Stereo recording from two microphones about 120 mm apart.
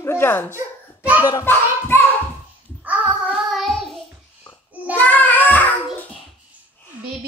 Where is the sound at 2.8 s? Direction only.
15° right (ahead or behind).